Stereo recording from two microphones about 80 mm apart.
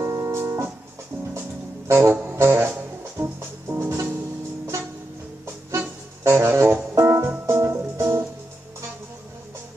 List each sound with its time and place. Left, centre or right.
0.0 s organ: right
1.9 s music: right
6.2 s music: right